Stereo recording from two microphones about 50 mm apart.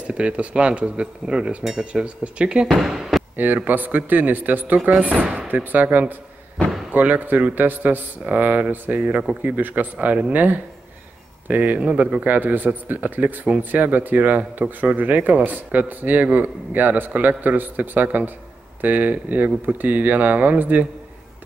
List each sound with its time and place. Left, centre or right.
0.0 s speech: right
1.6 s speech: centre
1.9 s speech: right
2.7 s speech: centre
3.3 s a man's voice: right